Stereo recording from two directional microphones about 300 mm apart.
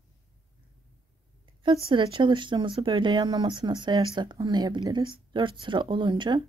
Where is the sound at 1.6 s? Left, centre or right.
Centre.